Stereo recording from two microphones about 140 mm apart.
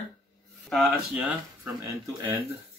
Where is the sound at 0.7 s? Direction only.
5° right (ahead or behind).